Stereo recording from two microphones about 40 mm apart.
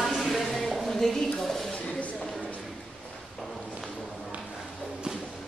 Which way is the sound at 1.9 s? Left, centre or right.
Left.